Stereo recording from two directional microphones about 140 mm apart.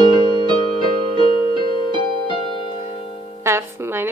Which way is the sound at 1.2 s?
40° left (ahead or behind).